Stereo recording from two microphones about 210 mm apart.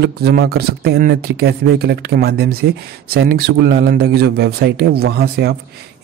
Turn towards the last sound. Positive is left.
turn(degrees=-50)  # may be behind; listen again after turning